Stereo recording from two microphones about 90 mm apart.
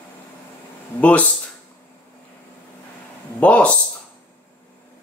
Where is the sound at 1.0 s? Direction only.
15° left (ahead or behind).